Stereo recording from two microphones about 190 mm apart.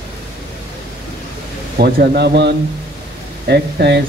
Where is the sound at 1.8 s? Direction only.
60° right (ahead or behind).